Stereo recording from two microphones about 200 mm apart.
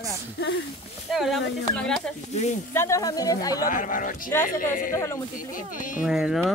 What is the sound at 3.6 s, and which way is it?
A man's voice, 40° left (ahead or behind).